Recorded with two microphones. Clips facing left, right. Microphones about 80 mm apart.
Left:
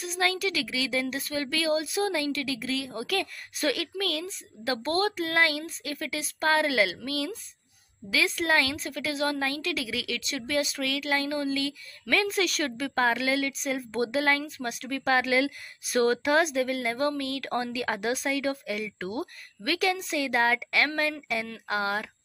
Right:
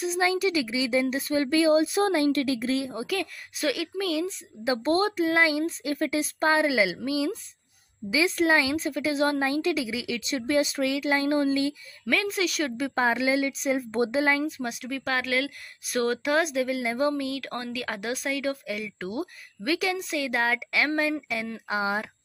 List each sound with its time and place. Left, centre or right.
0.0 s a woman's voice: centre
1.7 s a woman's voice: right
3.1 s speech: centre
4.6 s a woman's voice: centre
5.0 s a woman's voice: centre
8.5 s a woman's voice: centre
9.1 s a woman's voice: right
9.4 s a woman's voice: centre
10.3 s speech: right
10.8 s a woman's voice: centre
11.2 s a woman's voice: right
12.1 s a woman's voice: centre